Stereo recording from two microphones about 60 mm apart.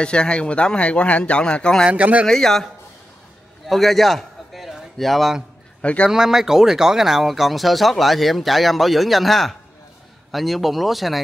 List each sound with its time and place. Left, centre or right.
0.0 s speech: centre
1.9 s speech: right
2.2 s speech: centre
3.6 s a sound: centre
5.8 s a man's voice: left
6.0 s speech: centre